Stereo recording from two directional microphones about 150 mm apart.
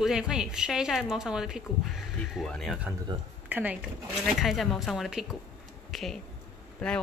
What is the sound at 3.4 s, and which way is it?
Speech, 10° right (ahead or behind).